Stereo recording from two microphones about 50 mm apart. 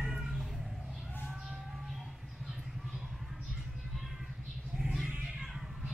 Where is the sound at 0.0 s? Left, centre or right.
Centre.